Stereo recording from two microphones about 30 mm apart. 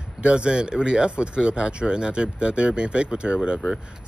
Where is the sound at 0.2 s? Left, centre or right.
Right.